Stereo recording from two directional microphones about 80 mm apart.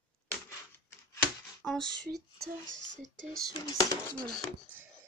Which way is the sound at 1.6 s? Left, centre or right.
Centre.